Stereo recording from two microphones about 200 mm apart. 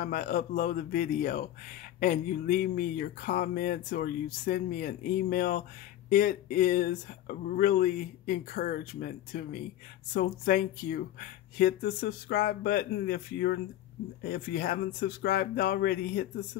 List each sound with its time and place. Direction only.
0.0 s speech: 45° left (ahead or behind)